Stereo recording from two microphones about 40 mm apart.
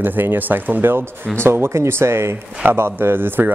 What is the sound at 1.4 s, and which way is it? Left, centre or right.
Speech, right.